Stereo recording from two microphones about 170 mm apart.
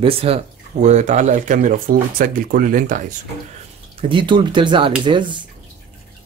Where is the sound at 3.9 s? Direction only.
30° right (ahead or behind).